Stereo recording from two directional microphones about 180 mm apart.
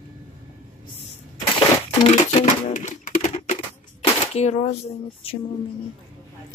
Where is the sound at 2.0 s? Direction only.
35° left (ahead or behind).